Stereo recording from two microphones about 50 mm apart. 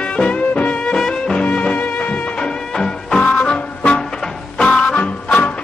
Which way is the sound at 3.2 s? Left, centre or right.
Left.